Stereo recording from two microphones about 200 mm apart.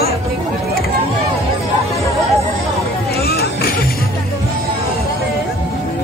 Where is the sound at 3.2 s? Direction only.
50° left (ahead or behind).